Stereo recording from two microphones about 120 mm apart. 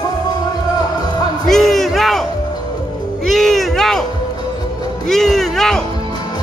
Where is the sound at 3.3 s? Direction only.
5° left (ahead or behind).